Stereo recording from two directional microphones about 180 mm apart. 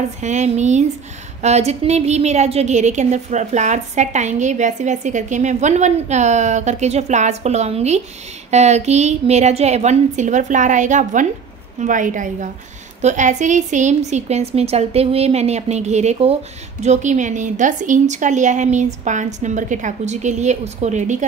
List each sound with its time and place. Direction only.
0.2 s a woman's voice: 40° right (ahead or behind)